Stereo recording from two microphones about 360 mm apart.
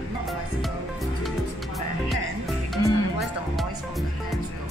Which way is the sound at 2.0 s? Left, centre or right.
Centre.